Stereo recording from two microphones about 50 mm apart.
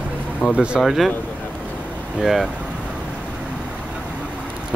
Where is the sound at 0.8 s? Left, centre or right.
Centre.